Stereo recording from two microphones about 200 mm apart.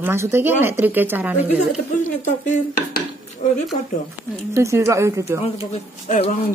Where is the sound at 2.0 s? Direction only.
40° left (ahead or behind).